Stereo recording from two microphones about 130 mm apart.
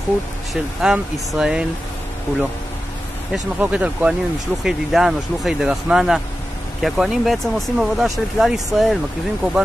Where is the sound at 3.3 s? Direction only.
10° right (ahead or behind).